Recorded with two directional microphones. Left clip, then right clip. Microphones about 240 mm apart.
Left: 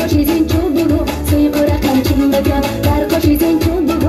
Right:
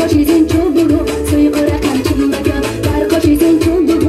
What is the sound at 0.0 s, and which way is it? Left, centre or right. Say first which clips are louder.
Music: right 3 dB; left.